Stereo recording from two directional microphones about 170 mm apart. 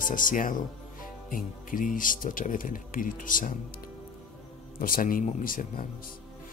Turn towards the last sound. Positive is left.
turn(degrees=55)  # may be behind; listen again after turning